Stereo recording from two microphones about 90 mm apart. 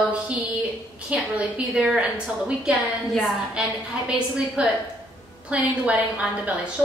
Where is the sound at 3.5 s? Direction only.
10° right (ahead or behind).